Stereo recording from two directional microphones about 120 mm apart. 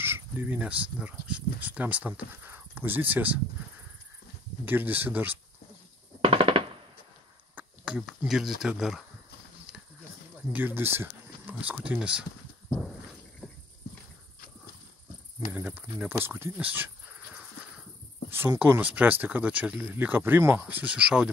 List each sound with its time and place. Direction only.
0.0 s speech: 15° right (ahead or behind)
4.6 s speech: 15° right (ahead or behind)
6.2 s machine gun: 50° right (ahead or behind)
7.5 s speech: 5° right (ahead or behind)
10.5 s speech: 15° right (ahead or behind)
15.5 s speech: 15° right (ahead or behind)
18.6 s speech: 15° right (ahead or behind)